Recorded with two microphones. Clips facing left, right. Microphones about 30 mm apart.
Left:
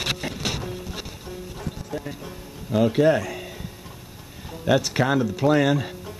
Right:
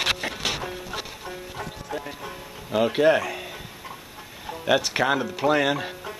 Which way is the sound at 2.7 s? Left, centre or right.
Right.